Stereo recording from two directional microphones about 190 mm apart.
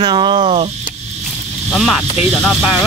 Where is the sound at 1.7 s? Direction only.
Centre (ahead or behind).